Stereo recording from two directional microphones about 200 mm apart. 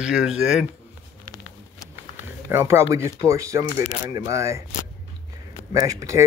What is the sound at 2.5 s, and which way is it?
Speech, 15° right (ahead or behind).